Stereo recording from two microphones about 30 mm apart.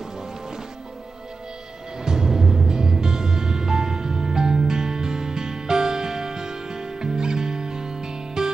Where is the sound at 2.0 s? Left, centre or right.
Right.